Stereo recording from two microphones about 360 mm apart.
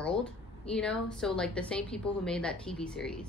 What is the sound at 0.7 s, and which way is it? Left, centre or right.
A woman's voice, centre.